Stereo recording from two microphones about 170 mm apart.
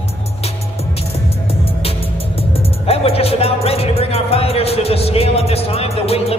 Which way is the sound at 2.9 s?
35° left (ahead or behind).